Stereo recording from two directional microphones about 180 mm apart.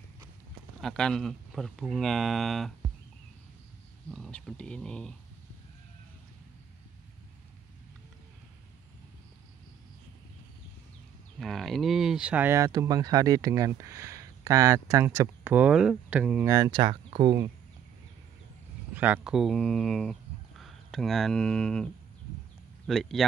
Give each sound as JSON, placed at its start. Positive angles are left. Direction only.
{"t": 0.7, "sound": "speech", "side_deg": 5}
{"t": 4.1, "sound": "speech", "side_deg": 5}
{"t": 11.3, "sound": "speech", "side_deg": 0}
{"t": 16.5, "sound": "speech", "side_deg": -25}
{"t": 18.9, "sound": "speech", "side_deg": -10}
{"t": 22.8, "sound": "speech", "side_deg": 0}